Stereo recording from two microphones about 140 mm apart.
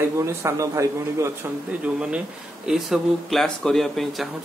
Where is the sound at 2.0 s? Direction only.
5° right (ahead or behind).